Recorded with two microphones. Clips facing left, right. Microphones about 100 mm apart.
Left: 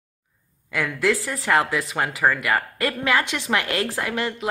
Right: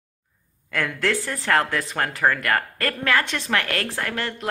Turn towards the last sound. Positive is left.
turn(degrees=10)  # may be behind; listen again after turning